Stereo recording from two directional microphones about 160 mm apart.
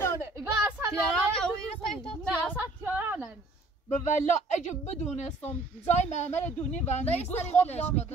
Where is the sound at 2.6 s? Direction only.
10° right (ahead or behind).